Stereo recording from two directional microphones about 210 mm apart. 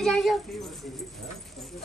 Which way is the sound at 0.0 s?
Centre (ahead or behind).